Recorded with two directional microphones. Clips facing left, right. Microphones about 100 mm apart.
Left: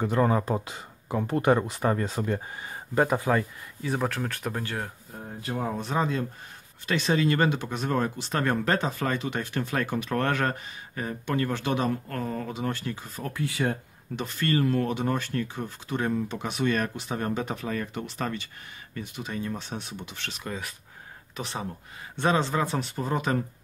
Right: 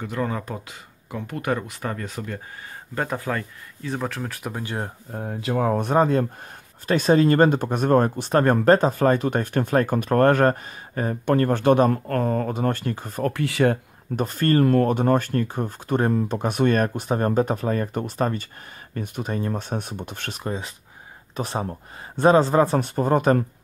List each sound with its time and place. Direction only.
0.0 s speech: 30° left (ahead or behind)
2.9 s speech: 15° left (ahead or behind); by 4.6 s 5° right (ahead or behind)
4.6 s speech: 25° right (ahead or behind)
5.1 s speech: 80° right
14.1 s speech: 45° right (ahead or behind)
20.4 s speech: 25° right (ahead or behind)
21.4 s speech: 45° right (ahead or behind)